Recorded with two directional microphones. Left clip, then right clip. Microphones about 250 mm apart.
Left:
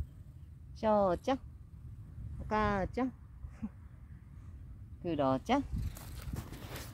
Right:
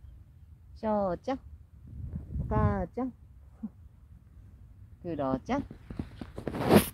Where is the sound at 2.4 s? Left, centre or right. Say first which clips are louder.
Even; right.